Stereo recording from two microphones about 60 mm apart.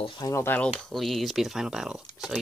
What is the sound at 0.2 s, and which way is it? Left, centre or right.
Speech, left.